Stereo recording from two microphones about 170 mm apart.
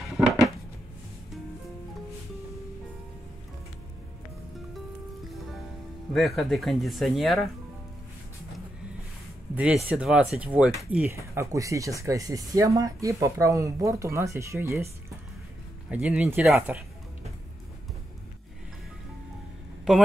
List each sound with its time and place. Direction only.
0.0 s a sound: centre (ahead or behind)
6.1 s speech: centre (ahead or behind)
9.8 s speech: 5° right (ahead or behind)
15.9 s speech: 10° right (ahead or behind)
19.9 s speech: 5° right (ahead or behind)